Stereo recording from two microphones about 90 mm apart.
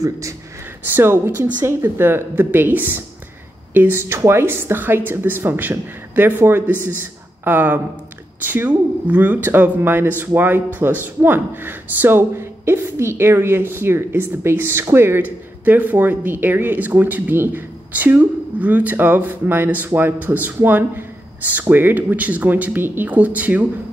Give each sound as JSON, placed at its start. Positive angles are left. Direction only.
{"t": 0.0, "sound": "speech", "side_deg": -35}